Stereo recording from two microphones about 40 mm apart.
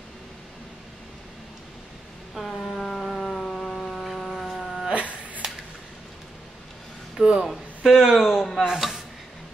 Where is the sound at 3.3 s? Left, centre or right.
Centre.